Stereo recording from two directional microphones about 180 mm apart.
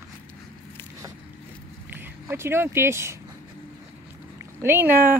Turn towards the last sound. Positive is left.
turn(degrees=-10)  # may be behind; listen again after turning